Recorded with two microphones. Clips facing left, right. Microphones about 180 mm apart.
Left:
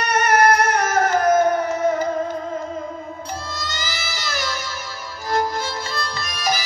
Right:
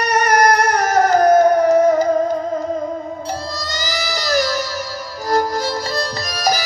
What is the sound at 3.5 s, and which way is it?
Music, 40° right (ahead or behind).